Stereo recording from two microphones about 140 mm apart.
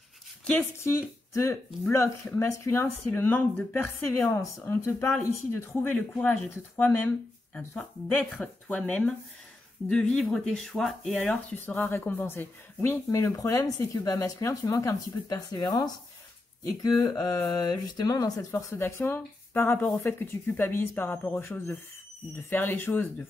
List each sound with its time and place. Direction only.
1.3 s speech: 20° left (ahead or behind); by 11.3 s 5° left (ahead or behind)
11.5 s speech: 15° left (ahead or behind)